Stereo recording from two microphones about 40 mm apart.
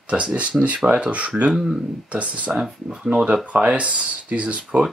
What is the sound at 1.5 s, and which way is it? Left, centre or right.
Speech, centre.